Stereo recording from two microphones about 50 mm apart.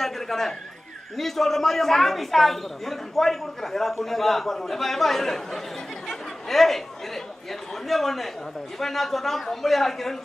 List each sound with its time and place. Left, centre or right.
0.0 s a sound: centre
1.1 s a woman's voice: centre
6.0 s chatter: centre
7.9 s a woman's voice: centre